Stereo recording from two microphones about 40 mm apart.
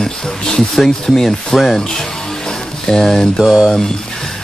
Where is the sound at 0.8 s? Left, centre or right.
Centre.